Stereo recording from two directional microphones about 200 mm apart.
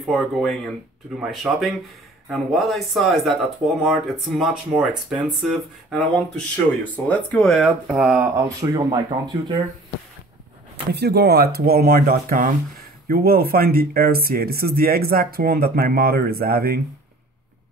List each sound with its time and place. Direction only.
0.1 s speech: centre (ahead or behind)
8.5 s speech: 15° right (ahead or behind)
10.9 s speech: 55° right (ahead or behind)